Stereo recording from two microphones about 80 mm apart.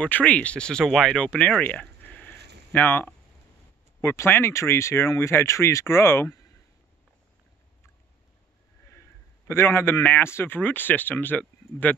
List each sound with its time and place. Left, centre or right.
0.0 s speech: centre
1.1 s a sound: centre
4.0 s speech: left
9.5 s a man's voice: left